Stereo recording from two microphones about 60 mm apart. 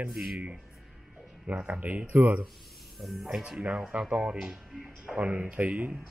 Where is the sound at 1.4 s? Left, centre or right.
Right.